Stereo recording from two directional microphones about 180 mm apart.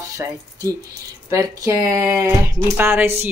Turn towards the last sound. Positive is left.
turn(degrees=-10)  # may be behind; listen again after turning